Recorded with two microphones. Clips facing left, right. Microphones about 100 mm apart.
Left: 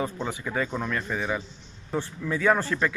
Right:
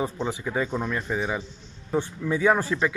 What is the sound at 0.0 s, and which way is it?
Speech, 15° right (ahead or behind).